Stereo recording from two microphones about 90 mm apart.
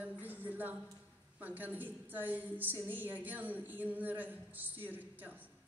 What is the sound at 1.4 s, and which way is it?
A woman's voice, 20° right (ahead or behind).